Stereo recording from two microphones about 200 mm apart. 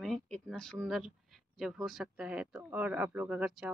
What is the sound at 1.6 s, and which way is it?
Speech, centre (ahead or behind).